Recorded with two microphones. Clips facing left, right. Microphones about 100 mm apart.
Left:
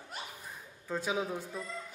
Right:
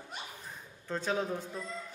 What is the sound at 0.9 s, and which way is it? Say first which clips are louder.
Speech: right 1 dB; 10° left (ahead or behind).